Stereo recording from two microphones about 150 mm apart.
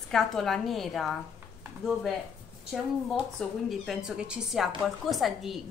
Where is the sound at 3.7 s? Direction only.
Centre (ahead or behind).